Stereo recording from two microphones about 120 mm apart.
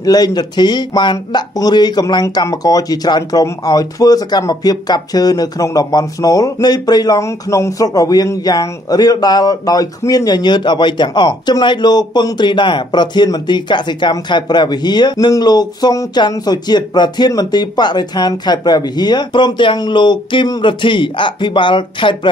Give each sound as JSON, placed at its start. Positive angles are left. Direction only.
{"t": 0.0, "sound": "speech", "side_deg": 35}